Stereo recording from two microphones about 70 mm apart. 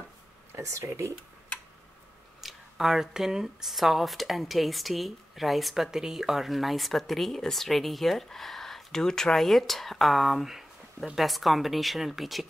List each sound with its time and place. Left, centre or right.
0.5 s speech: right
2.4 s speech: centre